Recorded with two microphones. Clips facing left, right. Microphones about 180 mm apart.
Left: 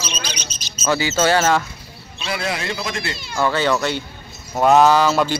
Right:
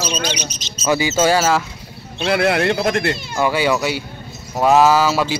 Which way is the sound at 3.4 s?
10° right (ahead or behind).